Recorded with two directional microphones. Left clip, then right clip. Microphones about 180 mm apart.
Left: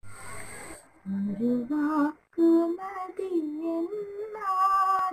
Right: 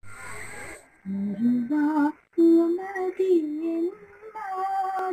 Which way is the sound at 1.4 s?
Centre (ahead or behind).